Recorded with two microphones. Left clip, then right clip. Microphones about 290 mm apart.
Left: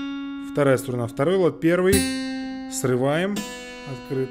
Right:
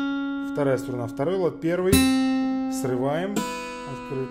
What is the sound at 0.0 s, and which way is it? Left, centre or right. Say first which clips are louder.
Music: right 4 dB; right.